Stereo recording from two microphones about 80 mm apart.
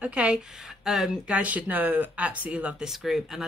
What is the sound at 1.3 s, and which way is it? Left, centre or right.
Speech, centre.